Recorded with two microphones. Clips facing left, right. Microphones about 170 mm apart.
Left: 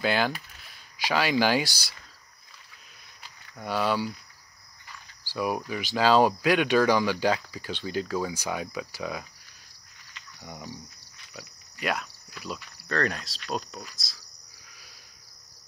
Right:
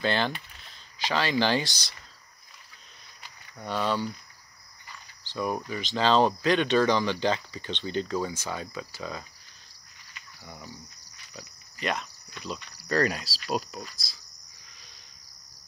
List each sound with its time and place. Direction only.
0.0 s speech: 5° left (ahead or behind)
3.5 s speech: 5° left (ahead or behind)
5.2 s speech: 10° left (ahead or behind)
10.4 s speech: 25° left (ahead or behind)
11.3 s cricket: 5° left (ahead or behind)
12.8 s speech: 5° right (ahead or behind)